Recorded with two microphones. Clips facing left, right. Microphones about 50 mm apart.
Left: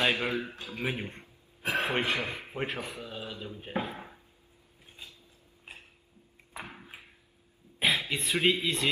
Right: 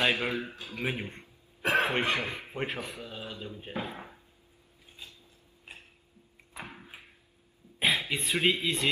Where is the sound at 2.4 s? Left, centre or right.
Centre.